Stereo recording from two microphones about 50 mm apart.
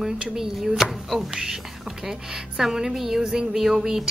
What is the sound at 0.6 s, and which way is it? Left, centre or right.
Speech, centre.